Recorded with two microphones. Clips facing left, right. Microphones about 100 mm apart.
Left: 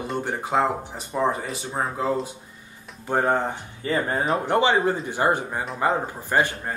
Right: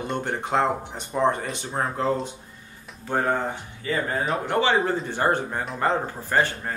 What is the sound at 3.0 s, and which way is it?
Speech, 20° left (ahead or behind).